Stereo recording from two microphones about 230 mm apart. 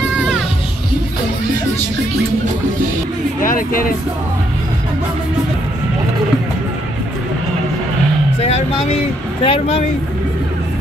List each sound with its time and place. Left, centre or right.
3.4 s speech: left
8.4 s music: left
9.4 s speech: left